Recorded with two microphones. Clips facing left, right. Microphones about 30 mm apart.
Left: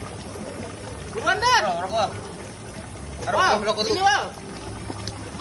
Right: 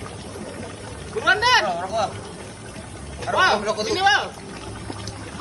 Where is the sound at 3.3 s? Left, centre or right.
Centre.